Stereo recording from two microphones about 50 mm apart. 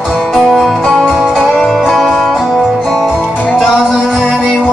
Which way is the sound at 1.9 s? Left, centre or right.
Centre.